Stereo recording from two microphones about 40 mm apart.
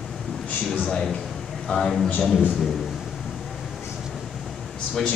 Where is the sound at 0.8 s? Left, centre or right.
Centre.